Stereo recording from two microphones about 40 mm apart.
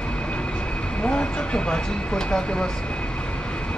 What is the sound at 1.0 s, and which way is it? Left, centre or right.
Speech, left.